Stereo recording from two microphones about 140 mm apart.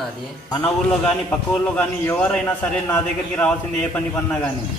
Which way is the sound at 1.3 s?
5° left (ahead or behind).